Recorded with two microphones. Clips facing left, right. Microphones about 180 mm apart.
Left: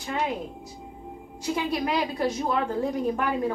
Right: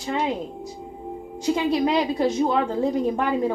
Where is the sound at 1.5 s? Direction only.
25° right (ahead or behind).